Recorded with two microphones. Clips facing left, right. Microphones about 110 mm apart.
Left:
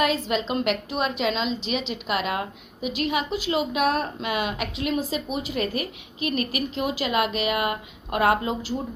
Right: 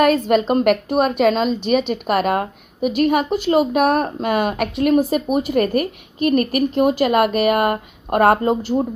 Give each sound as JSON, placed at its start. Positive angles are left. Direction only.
{"t": 0.0, "sound": "a woman's voice", "side_deg": -55}